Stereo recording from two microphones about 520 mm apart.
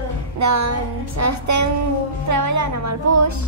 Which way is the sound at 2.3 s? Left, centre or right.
Right.